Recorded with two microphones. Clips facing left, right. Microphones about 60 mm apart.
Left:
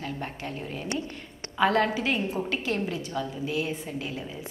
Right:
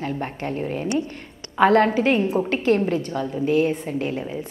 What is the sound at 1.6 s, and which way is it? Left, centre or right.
A woman's voice, right.